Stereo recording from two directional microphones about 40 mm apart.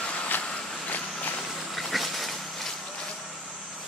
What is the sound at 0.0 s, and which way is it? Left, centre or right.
Vehicle, left.